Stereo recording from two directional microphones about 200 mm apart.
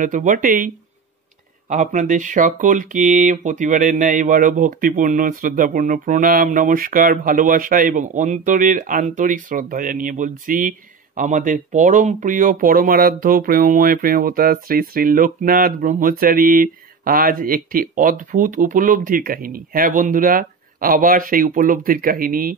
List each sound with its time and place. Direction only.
0.0 s speech: 40° right (ahead or behind)
1.7 s speech: 40° right (ahead or behind)